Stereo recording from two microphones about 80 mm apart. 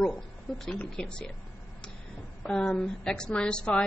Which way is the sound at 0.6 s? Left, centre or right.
Centre.